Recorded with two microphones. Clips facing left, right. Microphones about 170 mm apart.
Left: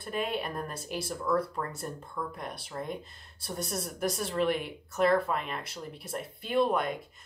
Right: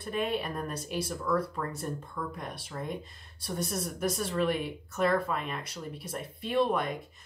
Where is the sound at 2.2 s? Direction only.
15° left (ahead or behind).